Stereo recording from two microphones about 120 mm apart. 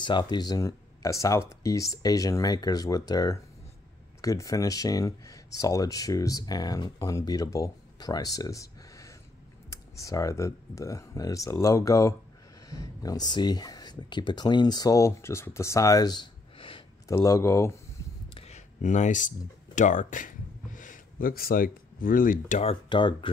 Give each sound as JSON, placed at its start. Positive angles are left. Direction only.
{"t": 0.0, "sound": "speech", "side_deg": 40}
{"t": 17.1, "sound": "speech", "side_deg": 25}
{"t": 18.3, "sound": "a sound", "side_deg": 65}
{"t": 22.5, "sound": "speech", "side_deg": 60}
{"t": 22.8, "sound": "speech", "side_deg": 40}